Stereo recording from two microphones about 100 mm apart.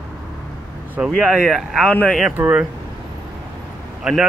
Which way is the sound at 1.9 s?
10° left (ahead or behind).